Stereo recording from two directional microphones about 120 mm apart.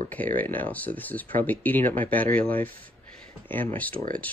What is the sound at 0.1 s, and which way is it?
Speech, 15° left (ahead or behind).